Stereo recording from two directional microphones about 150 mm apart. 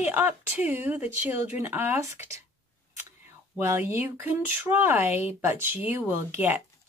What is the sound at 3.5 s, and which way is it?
Speech, 15° right (ahead or behind).